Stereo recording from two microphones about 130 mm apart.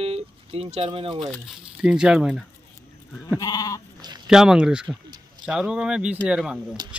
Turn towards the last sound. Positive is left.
turn(degrees=-5)  # may be behind; listen again after turning